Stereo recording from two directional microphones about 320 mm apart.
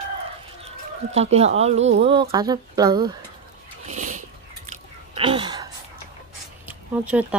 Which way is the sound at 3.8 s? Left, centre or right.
Right.